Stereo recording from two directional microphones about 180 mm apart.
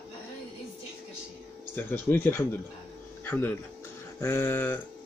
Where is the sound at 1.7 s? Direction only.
10° left (ahead or behind).